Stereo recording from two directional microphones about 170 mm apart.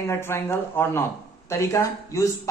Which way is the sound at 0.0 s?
15° left (ahead or behind).